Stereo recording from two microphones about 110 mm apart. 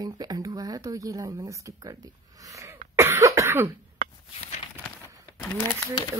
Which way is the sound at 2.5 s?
25° right (ahead or behind).